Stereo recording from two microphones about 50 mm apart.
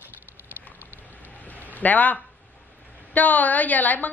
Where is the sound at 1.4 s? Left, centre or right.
Left.